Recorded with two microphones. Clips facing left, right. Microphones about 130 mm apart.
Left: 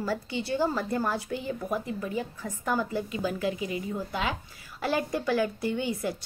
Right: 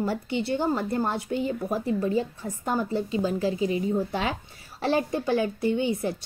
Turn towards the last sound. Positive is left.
turn(degrees=-25)  # may be behind; listen again after turning